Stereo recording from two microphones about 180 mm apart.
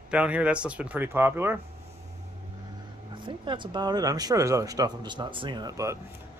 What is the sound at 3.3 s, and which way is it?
Speech, 25° right (ahead or behind).